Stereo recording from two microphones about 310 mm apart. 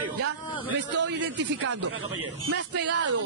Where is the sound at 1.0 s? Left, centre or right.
Right.